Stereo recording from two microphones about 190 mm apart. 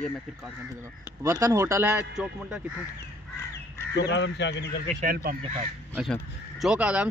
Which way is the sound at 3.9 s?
65° left (ahead or behind).